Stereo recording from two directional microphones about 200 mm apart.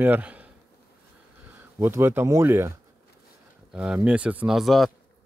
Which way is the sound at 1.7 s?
15° right (ahead or behind).